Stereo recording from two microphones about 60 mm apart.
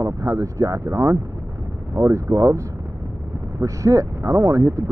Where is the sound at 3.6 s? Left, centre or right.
Right.